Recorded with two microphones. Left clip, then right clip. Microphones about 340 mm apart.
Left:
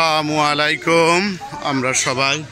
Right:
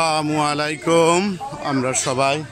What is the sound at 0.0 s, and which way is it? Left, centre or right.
Speech, centre.